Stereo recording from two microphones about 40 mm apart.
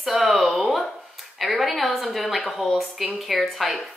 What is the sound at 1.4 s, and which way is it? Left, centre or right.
A woman's voice, centre.